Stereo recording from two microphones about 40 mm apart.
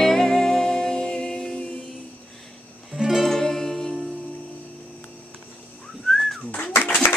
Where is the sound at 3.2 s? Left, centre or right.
Centre.